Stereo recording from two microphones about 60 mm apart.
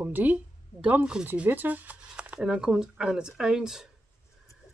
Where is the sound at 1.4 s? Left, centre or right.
Right.